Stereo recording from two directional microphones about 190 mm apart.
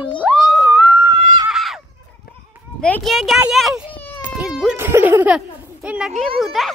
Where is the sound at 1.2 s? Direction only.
25° right (ahead or behind).